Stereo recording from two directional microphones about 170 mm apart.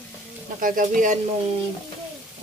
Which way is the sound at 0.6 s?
50° right (ahead or behind).